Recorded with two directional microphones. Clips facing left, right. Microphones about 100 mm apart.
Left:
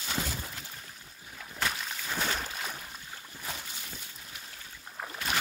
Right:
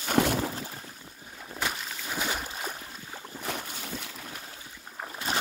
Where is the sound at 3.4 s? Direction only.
60° right (ahead or behind); by 4.3 s 75° right (ahead or behind).